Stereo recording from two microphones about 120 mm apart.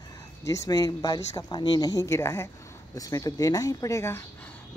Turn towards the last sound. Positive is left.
turn(degrees=25)  # may be behind; listen again after turning